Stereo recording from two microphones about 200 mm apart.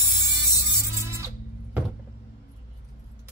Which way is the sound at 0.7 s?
15° right (ahead or behind).